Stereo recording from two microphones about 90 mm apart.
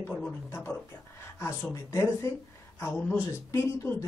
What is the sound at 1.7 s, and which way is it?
Speech, 35° left (ahead or behind).